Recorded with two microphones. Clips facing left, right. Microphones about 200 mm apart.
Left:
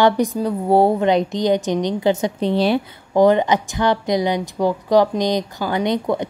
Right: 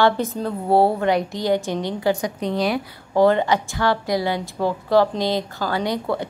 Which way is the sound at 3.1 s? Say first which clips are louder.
Left 2 dB; 15° left (ahead or behind).